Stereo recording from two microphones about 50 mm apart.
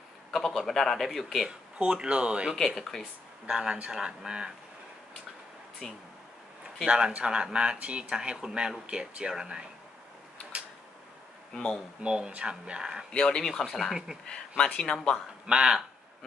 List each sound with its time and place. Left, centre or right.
0.3 s a man's voice: centre
1.8 s speech: centre
2.5 s a man's voice: centre
3.4 s speech: centre
5.8 s speech: centre
6.9 s speech: centre
11.5 s speech: centre
12.0 s speech: right
13.1 s speech: centre
13.5 s a man's voice: centre
14.6 s speech: centre
15.4 s speech: centre